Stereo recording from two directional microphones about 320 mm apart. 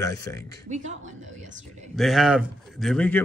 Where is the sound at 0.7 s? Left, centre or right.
Right.